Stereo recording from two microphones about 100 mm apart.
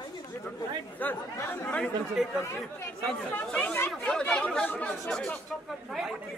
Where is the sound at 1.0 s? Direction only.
20° left (ahead or behind).